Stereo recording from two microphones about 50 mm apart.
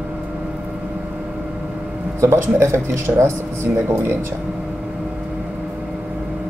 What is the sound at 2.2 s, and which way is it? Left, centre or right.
Speech, right.